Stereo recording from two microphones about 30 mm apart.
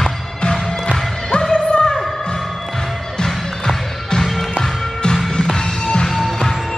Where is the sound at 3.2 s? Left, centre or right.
Left.